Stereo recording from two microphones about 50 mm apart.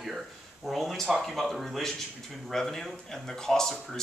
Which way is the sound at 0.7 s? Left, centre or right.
Centre.